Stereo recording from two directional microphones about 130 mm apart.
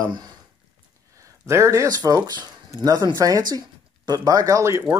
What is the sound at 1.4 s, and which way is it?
Speech, 20° right (ahead or behind).